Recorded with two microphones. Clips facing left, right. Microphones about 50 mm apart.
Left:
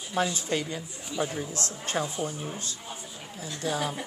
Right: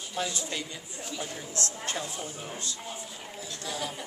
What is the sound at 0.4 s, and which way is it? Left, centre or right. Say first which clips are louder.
A woman's voice: left 6 dB; left.